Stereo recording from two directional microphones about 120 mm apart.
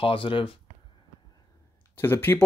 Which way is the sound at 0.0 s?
45° left (ahead or behind).